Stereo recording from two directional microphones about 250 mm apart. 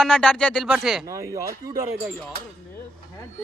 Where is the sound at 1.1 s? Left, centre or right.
Centre.